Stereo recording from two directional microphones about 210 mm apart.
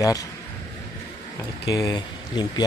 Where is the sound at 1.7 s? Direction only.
20° left (ahead or behind).